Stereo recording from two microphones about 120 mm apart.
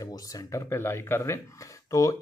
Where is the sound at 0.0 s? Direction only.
30° left (ahead or behind).